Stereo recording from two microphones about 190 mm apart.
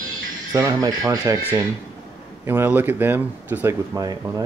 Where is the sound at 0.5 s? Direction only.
20° right (ahead or behind).